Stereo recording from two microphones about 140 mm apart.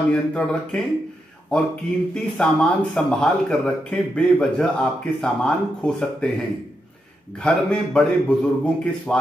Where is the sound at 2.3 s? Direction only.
5° left (ahead or behind).